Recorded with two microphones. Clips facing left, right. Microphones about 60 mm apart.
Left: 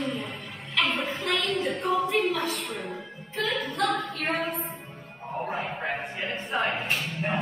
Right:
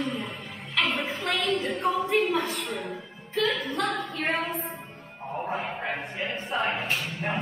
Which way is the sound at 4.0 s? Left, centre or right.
Left.